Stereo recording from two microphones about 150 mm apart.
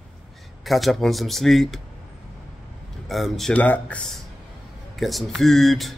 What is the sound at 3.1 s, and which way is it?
Speech, centre (ahead or behind).